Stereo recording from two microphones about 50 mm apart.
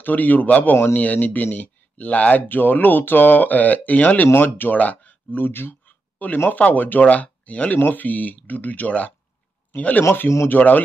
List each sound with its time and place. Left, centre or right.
0.0 s speech: left